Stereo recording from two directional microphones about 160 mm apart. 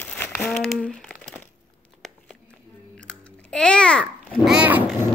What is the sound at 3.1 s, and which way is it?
Typing, 5° left (ahead or behind).